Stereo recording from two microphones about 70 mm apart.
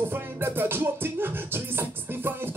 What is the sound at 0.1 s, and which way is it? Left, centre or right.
Music, right.